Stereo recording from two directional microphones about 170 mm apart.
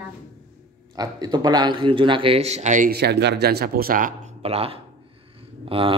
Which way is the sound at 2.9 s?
80° right.